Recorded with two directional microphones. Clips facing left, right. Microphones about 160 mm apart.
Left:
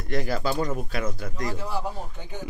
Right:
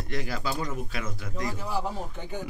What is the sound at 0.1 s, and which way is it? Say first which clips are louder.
Speech: left 6 dB; 40° left (ahead or behind).